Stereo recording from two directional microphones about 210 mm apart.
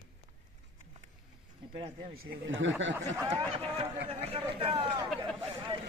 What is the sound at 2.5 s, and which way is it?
Speech, 65° right (ahead or behind).